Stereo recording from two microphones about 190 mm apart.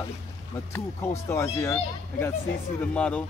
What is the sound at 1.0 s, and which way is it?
Speech, 15° left (ahead or behind).